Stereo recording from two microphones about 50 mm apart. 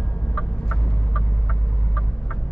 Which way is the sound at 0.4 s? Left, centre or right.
Centre.